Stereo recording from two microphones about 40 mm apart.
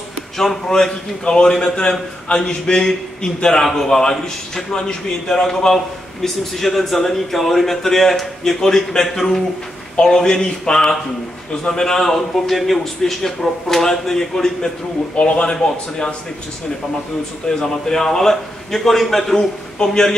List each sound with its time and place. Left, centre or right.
0.4 s a man's voice: centre
6.2 s speech: centre
15.1 s a man's voice: left
17.5 s speech: centre